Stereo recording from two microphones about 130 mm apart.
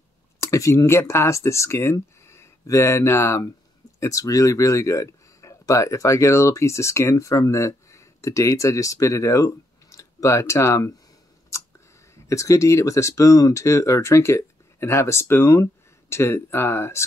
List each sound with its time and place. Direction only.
0.4 s speech: 25° left (ahead or behind)
12.3 s speech: 25° left (ahead or behind)